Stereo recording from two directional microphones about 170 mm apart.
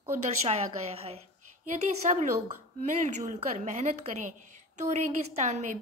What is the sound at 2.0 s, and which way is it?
A woman's voice, 45° right (ahead or behind).